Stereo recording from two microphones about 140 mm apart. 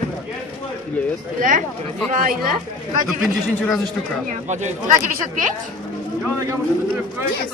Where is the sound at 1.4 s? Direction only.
75° right (ahead or behind).